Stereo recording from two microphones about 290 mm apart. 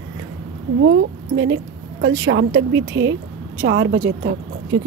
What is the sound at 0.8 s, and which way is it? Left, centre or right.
A woman's voice, right.